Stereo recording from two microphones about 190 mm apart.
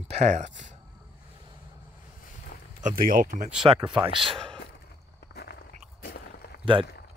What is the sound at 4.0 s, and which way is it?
Speech, 25° right (ahead or behind).